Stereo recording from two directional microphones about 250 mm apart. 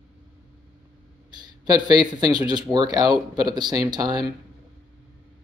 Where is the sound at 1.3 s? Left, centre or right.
Centre.